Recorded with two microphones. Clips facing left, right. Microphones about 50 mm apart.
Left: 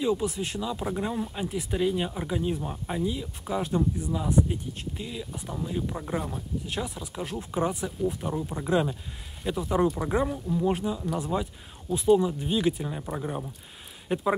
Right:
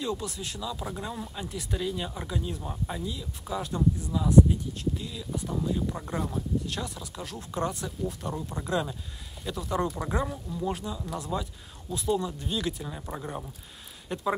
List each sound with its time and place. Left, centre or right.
0.0 s speech: centre
5.7 s speech: left
9.8 s speech: centre
10.5 s speech: left
13.0 s speech: centre
14.0 s speech: centre